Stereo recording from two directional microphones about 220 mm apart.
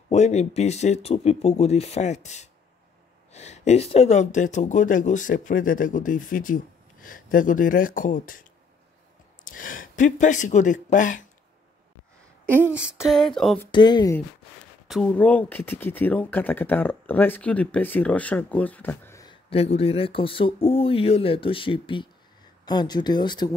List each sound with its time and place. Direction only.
0.1 s speech: 30° left (ahead or behind)
12.7 s a sound: 5° right (ahead or behind)
13.7 s speech: 20° left (ahead or behind)
14.9 s speech: 5° left (ahead or behind)
19.5 s speech: 25° left (ahead or behind)